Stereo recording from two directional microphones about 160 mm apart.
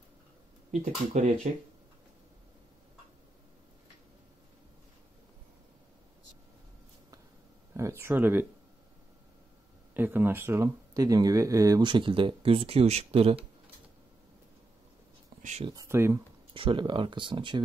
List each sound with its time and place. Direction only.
0.7 s speech: 45° right (ahead or behind)
8.0 s speech: 15° right (ahead or behind)
9.9 s speech: 15° right (ahead or behind); by 13.4 s 40° right (ahead or behind)
15.6 s speech: 25° right (ahead or behind)
16.5 s speech: 30° right (ahead or behind)